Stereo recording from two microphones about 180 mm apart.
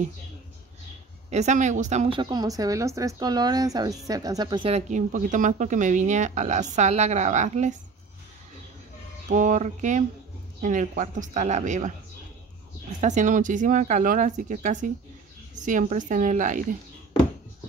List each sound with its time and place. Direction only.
1.3 s a woman's voice: 40° right (ahead or behind)
9.3 s speech: 45° right (ahead or behind)
13.0 s speech: 45° right (ahead or behind)